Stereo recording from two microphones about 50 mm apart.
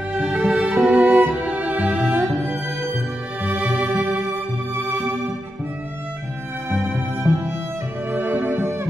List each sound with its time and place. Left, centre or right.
0.2 s music: right
3.5 s music: right
6.9 s music: right